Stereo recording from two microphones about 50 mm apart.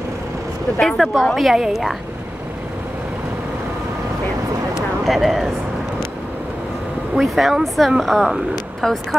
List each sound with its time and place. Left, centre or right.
0.9 s speech: centre
5.0 s speech: centre
7.2 s speech: centre